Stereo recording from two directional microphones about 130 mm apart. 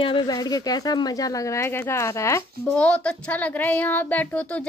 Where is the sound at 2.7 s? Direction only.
10° left (ahead or behind).